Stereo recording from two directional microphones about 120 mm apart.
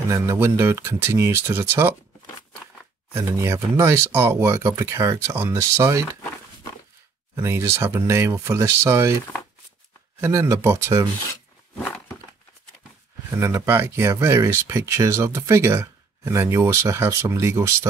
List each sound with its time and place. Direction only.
0.1 s speech: 25° right (ahead or behind)
3.1 s speech: 25° right (ahead or behind)
7.4 s speech: 20° right (ahead or behind)
10.2 s speech: 20° right (ahead or behind)
11.8 s a sound: 15° left (ahead or behind)
13.3 s speech: 25° right (ahead or behind)